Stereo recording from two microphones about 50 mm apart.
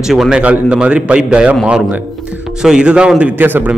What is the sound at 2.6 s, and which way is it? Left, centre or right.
Speech, centre.